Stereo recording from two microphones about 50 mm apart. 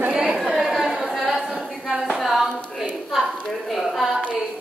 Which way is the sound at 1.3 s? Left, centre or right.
Centre.